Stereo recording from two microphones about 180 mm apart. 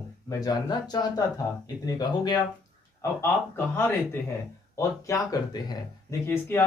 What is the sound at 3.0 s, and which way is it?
Speech, 15° left (ahead or behind).